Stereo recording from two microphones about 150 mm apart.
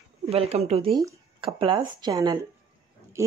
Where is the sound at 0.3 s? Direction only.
45° right (ahead or behind).